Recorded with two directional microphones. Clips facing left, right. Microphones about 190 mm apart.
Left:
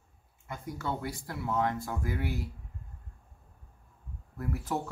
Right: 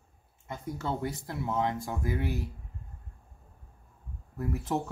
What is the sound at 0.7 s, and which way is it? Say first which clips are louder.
Speech: right 2 dB; 25° right (ahead or behind).